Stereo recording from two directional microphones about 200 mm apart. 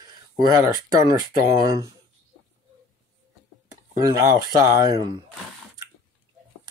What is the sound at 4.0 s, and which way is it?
Speech, 20° right (ahead or behind).